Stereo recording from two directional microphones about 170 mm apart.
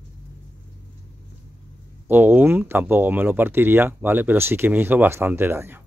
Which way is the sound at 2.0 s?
10° right (ahead or behind).